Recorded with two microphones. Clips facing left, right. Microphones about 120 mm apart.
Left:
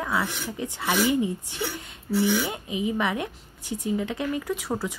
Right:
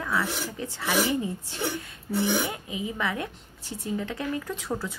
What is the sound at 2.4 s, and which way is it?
A woman's voice, 20° left (ahead or behind).